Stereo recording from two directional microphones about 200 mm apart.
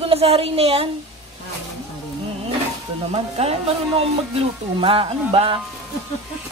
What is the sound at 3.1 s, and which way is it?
Music, 30° right (ahead or behind).